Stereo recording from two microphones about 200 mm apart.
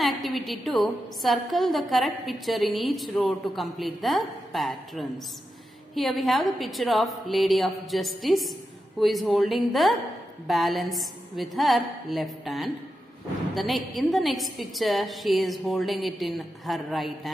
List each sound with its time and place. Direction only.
0.0 s a woman's voice: centre (ahead or behind)